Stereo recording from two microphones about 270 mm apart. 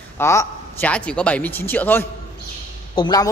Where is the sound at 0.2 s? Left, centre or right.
Centre.